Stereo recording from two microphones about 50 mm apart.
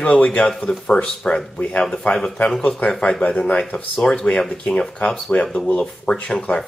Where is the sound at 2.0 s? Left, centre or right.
Centre.